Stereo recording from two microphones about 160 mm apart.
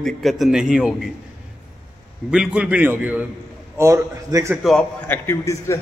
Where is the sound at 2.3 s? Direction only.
5° right (ahead or behind).